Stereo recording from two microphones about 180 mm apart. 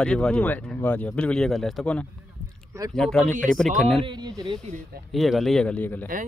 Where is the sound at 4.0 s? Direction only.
25° right (ahead or behind).